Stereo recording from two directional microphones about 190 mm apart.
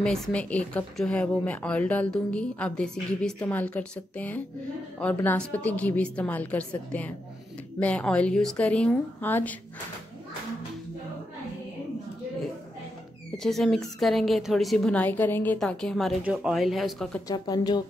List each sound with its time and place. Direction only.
0.0 s a woman's voice: 5° left (ahead or behind)
13.4 s a woman's voice: centre (ahead or behind)
17.3 s speech: 20° left (ahead or behind)